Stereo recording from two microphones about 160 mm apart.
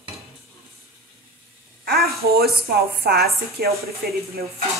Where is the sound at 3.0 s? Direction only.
75° right (ahead or behind).